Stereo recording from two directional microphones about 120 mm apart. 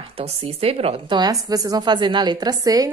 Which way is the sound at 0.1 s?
55° right (ahead or behind).